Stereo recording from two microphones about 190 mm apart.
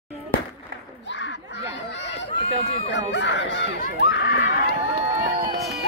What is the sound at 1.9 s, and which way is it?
Chatter, 65° left (ahead or behind).